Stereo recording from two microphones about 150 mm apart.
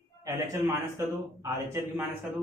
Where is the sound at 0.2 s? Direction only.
20° right (ahead or behind).